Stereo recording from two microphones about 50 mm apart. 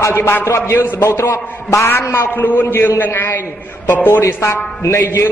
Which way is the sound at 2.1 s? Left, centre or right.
Left.